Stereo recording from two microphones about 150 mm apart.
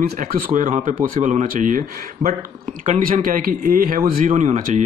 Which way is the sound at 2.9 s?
55° right (ahead or behind).